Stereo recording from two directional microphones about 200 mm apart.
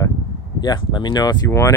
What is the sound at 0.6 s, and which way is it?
Speech, 20° left (ahead or behind).